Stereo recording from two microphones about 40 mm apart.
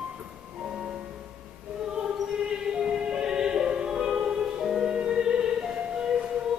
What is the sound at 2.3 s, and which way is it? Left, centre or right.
Music, centre.